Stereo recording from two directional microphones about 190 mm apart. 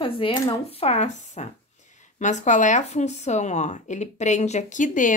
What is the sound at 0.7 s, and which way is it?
Speech, 35° left (ahead or behind).